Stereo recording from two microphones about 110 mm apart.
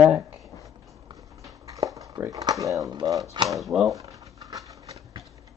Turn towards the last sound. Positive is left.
turn(degrees=-30)  # may be behind; listen again after turning